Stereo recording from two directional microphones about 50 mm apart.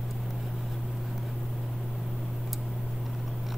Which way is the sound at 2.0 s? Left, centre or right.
Centre.